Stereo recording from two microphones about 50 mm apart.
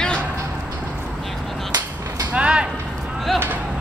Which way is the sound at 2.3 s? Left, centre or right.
Right.